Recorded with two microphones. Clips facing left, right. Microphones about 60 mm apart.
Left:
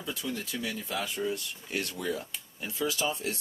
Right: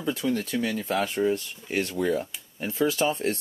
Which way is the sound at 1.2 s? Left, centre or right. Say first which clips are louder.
Right 8 dB; right.